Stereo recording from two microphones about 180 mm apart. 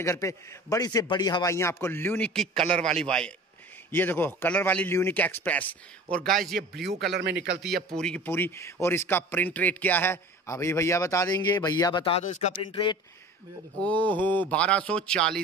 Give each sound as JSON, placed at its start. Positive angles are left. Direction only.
{"t": 0.0, "sound": "a man's voice", "side_deg": 15}
{"t": 6.8, "sound": "a man's voice", "side_deg": -65}
{"t": 7.6, "sound": "a man's voice", "side_deg": 0}
{"t": 13.7, "sound": "a man's voice", "side_deg": 10}